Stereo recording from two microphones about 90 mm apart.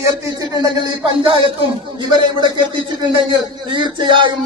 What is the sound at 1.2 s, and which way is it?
Speech, 75° right (ahead or behind).